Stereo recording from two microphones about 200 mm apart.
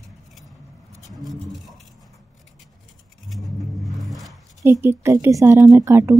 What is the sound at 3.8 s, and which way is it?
Music, centre (ahead or behind).